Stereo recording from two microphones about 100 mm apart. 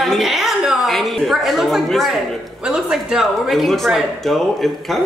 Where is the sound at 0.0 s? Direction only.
Centre (ahead or behind).